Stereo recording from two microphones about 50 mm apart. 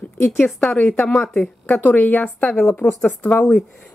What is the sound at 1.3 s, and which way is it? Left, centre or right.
A woman's voice, left.